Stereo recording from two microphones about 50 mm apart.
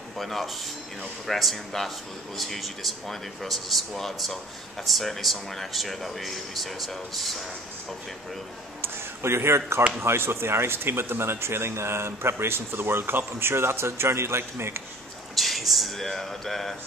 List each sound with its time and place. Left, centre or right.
0.2 s speech: centre
8.8 s a man's voice: right
15.3 s speech: centre